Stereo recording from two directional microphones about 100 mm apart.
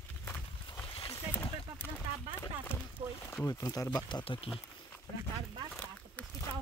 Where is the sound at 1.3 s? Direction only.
15° left (ahead or behind).